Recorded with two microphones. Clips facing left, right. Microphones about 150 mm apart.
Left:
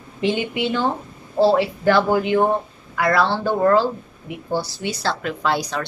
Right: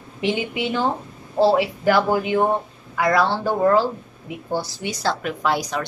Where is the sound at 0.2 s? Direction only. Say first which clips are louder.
Left 2 dB; 15° right (ahead or behind).